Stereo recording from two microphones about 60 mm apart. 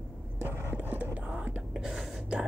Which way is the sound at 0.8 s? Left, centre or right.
Right.